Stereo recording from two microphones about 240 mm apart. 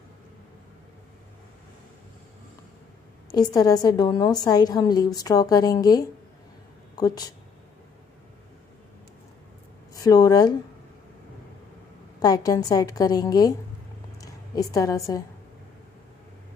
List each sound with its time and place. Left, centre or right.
3.3 s a woman's voice: centre
9.9 s speech: centre
12.2 s a woman's voice: centre